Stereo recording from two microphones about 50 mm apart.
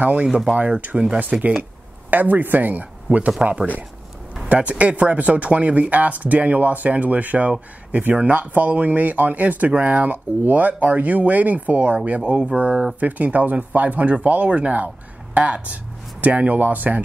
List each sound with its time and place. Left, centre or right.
0.0 s mantra: right
0.6 s speech: right
12.2 s mantra: right
13.0 s speech: right
15.3 s mantra: right
16.2 s speech: right